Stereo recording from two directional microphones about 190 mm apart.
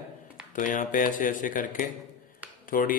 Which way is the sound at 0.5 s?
45° left (ahead or behind).